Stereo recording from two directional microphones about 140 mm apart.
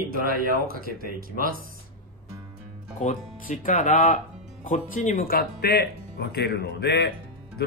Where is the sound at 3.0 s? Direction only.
70° left (ahead or behind); by 5.4 s 90° left.